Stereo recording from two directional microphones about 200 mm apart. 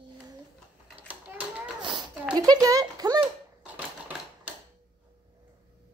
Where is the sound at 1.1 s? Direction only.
5° right (ahead or behind).